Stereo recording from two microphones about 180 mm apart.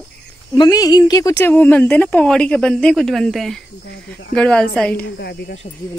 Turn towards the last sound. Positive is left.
turn(degrees=65)  # may be behind; listen again after turning